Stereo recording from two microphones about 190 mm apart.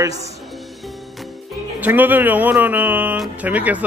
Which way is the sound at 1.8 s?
10° right (ahead or behind).